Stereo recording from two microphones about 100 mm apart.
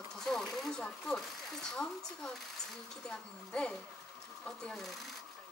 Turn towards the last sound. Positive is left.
turn(degrees=5)  # may be behind; listen again after turning